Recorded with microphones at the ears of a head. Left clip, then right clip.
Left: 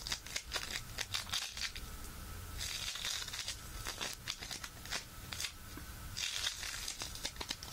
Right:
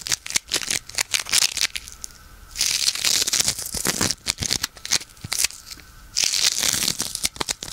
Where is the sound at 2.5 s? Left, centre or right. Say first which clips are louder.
Right 19 dB; right.